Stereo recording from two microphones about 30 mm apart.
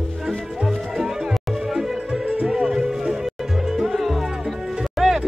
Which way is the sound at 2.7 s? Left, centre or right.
Centre.